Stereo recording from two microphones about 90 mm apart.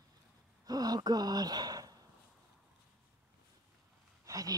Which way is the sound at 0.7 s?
45° right (ahead or behind).